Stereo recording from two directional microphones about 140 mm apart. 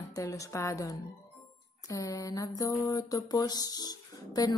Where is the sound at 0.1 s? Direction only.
20° left (ahead or behind).